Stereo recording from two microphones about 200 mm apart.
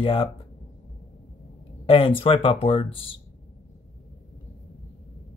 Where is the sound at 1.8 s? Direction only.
25° left (ahead or behind).